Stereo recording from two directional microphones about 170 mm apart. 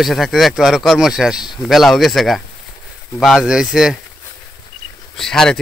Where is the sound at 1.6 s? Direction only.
Centre (ahead or behind).